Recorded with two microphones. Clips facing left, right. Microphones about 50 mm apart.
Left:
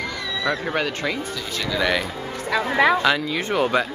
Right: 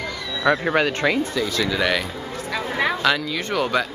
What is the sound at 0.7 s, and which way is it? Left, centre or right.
Speech, right.